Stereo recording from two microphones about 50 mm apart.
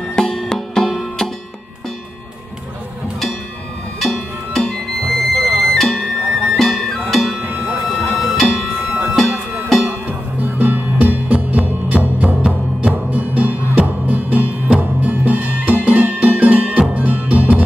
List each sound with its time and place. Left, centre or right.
0.1 s music: centre
4.0 s music: centre
9.8 s music: right